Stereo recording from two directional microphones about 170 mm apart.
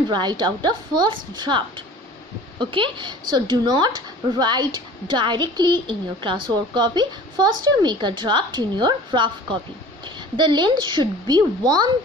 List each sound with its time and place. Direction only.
0.1 s a woman's voice: 25° right (ahead or behind)
2.6 s a woman's voice: 30° right (ahead or behind)